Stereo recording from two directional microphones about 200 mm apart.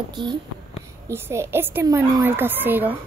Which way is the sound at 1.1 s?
10° right (ahead or behind).